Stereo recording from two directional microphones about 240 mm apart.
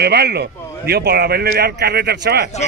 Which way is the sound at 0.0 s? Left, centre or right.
Right.